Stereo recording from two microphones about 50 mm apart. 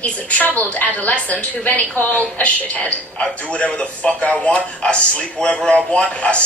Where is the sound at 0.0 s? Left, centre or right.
Left.